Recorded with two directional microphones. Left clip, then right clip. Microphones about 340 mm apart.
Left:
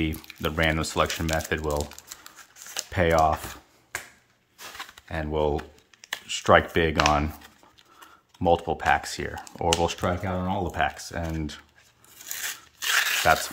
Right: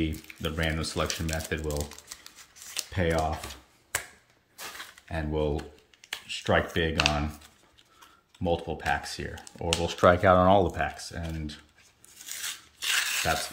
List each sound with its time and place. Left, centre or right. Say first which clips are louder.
0.0 s speech: left 3 dB; centre
3.9 s finger snapping: right 2 dB; right
5.0 s speech: left 4 dB; centre
8.4 s speech: left 7 dB; centre
9.9 s speech: right 9 dB; centre
10.7 s speech: left 5 dB; centre
12.3 s a sound: left 3 dB; centre